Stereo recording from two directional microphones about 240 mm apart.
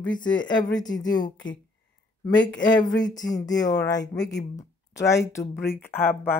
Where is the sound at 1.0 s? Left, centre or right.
Centre.